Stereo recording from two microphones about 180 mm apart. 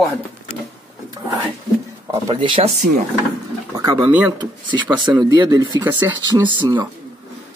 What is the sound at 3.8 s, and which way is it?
Speech, 15° right (ahead or behind).